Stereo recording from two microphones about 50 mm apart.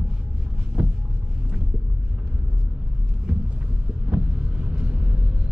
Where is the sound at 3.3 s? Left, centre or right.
Right.